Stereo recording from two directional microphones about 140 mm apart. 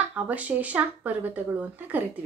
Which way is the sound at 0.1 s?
10° right (ahead or behind).